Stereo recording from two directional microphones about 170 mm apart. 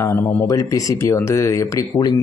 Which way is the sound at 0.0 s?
15° left (ahead or behind).